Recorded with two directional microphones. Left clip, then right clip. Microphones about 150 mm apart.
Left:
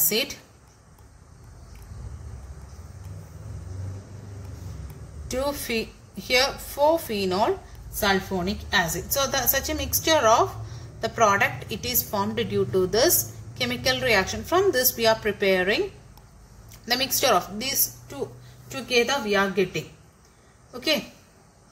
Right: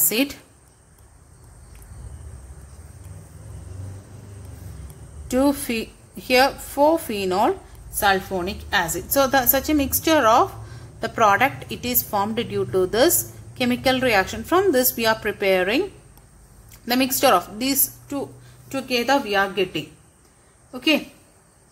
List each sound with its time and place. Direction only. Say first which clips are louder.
0.1 s a woman's voice: right 3 dB; 45° right (ahead or behind)
5.3 s a woman's voice: right 5 dB; 50° right (ahead or behind)
16.8 s a woman's voice: right 4 dB; 50° right (ahead or behind)
19.4 s a woman's voice: right 2 dB; 40° right (ahead or behind)